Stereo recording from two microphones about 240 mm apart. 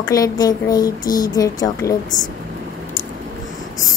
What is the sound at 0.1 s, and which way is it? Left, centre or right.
Speech, centre.